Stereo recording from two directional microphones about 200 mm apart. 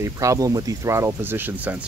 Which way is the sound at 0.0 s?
15° right (ahead or behind).